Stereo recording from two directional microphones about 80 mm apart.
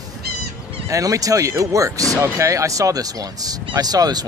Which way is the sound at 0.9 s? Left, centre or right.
Right.